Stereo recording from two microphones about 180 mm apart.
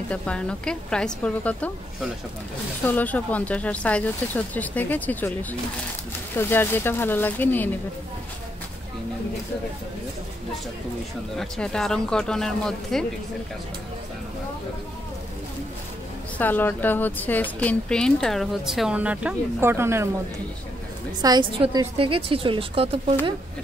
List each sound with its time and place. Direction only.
0.1 s speech: 5° left (ahead or behind)
2.8 s speech: 10° left (ahead or behind)
11.3 s speech: 5° left (ahead or behind)
16.3 s speech: 10° left (ahead or behind); by 20.1 s 15° right (ahead or behind)
21.2 s a woman's voice: 25° right (ahead or behind)